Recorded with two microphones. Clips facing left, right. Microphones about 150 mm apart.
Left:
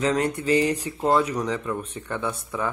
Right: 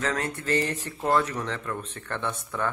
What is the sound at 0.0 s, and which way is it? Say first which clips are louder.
Speech: left 6 dB; 20° left (ahead or behind).